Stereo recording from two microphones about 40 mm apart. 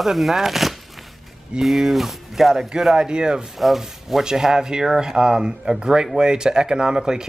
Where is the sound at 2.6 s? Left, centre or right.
Centre.